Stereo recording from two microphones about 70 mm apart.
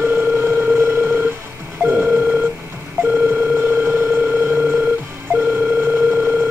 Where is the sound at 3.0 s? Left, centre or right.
Right.